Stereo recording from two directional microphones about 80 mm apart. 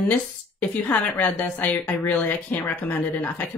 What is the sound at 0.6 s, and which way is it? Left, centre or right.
Speech, centre.